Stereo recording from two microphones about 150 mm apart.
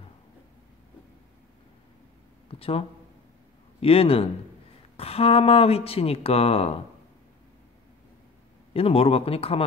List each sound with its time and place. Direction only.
2.4 s speech: 40° left (ahead or behind)
3.8 s speech: 40° left (ahead or behind)
8.7 s speech: 40° left (ahead or behind)